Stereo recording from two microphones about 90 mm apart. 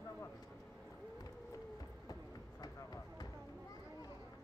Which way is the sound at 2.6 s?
45° left (ahead or behind).